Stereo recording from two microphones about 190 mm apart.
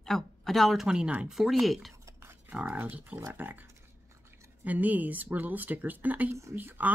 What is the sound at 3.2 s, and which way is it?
Speech, 10° right (ahead or behind).